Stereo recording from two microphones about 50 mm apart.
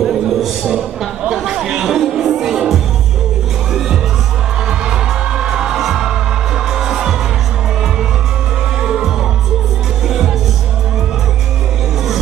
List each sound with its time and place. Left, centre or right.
0.0 s a sound: centre
1.3 s chatter: centre
4.6 s music: centre
8.8 s music: centre